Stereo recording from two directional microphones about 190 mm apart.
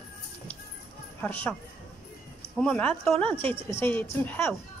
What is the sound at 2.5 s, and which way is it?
A woman's voice, 5° left (ahead or behind).